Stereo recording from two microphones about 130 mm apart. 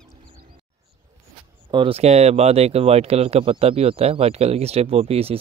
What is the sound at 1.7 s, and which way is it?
Speech, 40° right (ahead or behind).